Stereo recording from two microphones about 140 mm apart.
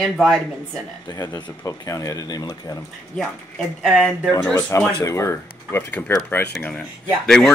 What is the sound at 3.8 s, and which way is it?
Speech, centre (ahead or behind).